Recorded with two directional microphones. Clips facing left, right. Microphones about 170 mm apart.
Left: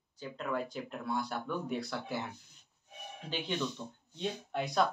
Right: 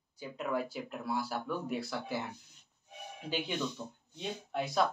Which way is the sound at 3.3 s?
10° right (ahead or behind).